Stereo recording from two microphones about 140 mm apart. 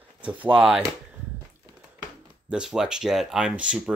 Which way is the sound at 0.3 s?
10° right (ahead or behind).